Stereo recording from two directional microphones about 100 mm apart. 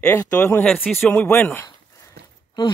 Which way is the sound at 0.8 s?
Centre (ahead or behind).